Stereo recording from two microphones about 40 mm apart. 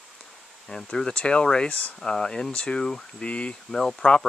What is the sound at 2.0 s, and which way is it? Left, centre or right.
Speech, centre.